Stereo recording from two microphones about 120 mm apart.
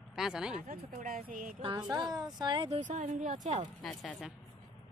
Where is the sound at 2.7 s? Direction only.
80° right.